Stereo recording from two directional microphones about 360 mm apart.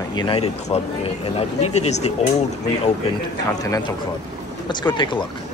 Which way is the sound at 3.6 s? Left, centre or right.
Centre.